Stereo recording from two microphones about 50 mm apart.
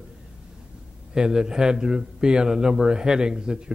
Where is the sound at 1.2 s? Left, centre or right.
Centre.